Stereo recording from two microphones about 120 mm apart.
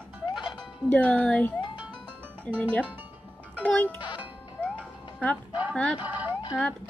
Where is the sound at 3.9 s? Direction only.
40° left (ahead or behind).